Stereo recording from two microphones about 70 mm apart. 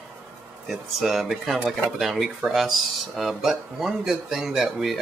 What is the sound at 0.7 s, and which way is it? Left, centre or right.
Speech, centre.